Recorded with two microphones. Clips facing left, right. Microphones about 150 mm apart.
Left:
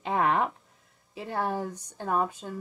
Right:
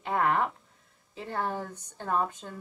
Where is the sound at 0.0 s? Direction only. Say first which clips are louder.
Left 1 dB; 20° left (ahead or behind).